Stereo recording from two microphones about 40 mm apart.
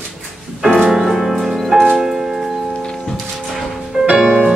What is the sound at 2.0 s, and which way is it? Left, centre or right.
Music, centre.